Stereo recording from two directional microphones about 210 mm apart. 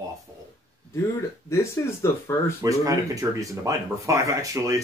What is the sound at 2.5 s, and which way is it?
Speech, 15° right (ahead or behind).